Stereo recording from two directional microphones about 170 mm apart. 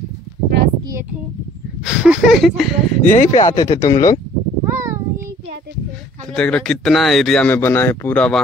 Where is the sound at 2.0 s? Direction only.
Centre (ahead or behind).